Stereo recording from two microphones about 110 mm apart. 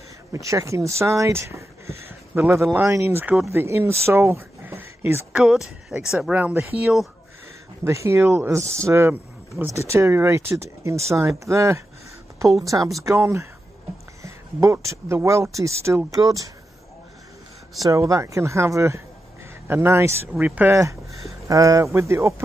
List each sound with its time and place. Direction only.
0.3 s speech: 30° right (ahead or behind)
5.3 s speech: 5° right (ahead or behind)
7.8 s speech: 25° right (ahead or behind)
17.8 s speech: 30° right (ahead or behind); by 20.7 s 15° right (ahead or behind)
20.7 s speech: 25° right (ahead or behind)